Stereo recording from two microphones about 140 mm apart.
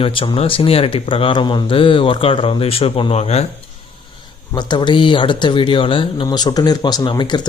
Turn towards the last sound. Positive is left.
turn(degrees=35)  # may be behind; listen again after turning